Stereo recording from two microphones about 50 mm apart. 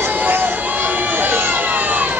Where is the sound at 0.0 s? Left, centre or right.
Right.